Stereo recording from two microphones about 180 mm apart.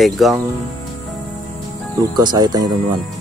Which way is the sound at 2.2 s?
25° right (ahead or behind).